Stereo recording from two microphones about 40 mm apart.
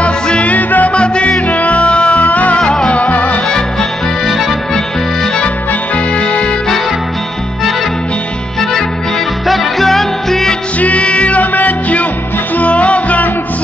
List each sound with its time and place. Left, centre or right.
0.0 s music: left
0.9 s music: left
1.5 s music: left
2.6 s music: centre
2.9 s music: left
4.3 s music: centre
9.5 s music: centre
10.8 s music: left